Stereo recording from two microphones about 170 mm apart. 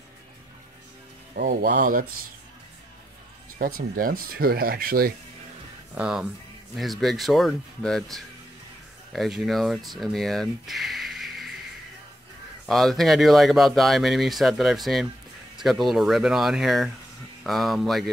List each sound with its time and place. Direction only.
1.3 s speech: 55° right (ahead or behind)
3.5 s speech: 55° right (ahead or behind)
5.9 s speech: 5° right (ahead or behind)
12.6 s speech: centre (ahead or behind)